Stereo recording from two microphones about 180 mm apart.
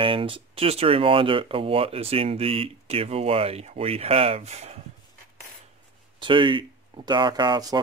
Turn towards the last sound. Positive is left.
turn(degrees=-25)  # may be behind; listen again after turning